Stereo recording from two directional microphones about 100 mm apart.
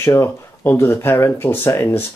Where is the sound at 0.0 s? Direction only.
25° left (ahead or behind).